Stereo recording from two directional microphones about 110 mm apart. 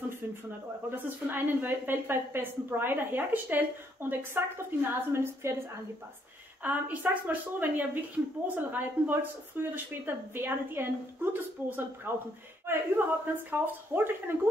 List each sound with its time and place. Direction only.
0.8 s speech: 20° right (ahead or behind)
6.6 s a woman's voice: 15° right (ahead or behind)